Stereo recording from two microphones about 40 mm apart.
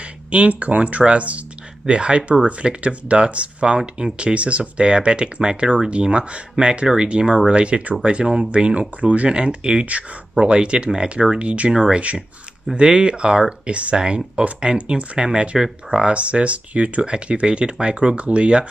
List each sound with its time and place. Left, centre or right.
0.3 s speech: right
9.0 s speech: right
9.3 s speech: right
11.3 s speech: right
12.7 s speech: right